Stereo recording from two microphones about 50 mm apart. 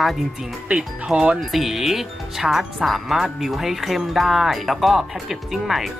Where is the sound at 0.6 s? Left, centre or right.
Right.